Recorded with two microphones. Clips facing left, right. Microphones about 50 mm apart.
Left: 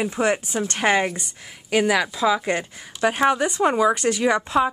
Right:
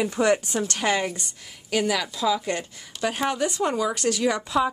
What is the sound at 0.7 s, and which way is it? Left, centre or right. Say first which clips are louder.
A woman's voice: left 6 dB; left.